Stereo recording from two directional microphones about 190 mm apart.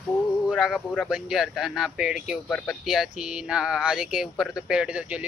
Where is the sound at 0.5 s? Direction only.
Centre (ahead or behind).